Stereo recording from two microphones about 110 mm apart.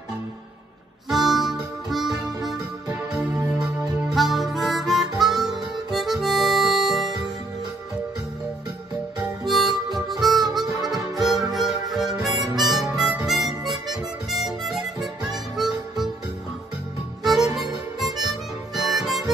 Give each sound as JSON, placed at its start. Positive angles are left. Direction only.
{"t": 1.0, "sound": "harmonica", "side_deg": 0}
{"t": 3.2, "sound": "music", "side_deg": -5}
{"t": 4.1, "sound": "harmonica", "side_deg": 0}
{"t": 9.5, "sound": "harmonica", "side_deg": 0}
{"t": 12.4, "sound": "harmonica", "side_deg": -40}
{"t": 12.7, "sound": "harmonica", "side_deg": -5}
{"t": 17.2, "sound": "music", "side_deg": -5}
{"t": 18.2, "sound": "harmonica", "side_deg": 0}